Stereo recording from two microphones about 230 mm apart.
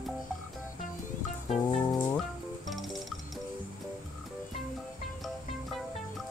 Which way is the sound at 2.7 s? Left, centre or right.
Centre.